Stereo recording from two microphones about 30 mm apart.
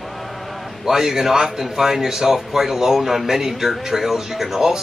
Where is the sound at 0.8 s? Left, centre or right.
Centre.